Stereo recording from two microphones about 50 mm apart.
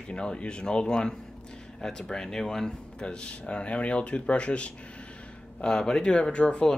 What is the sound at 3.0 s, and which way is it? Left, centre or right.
Speech, left.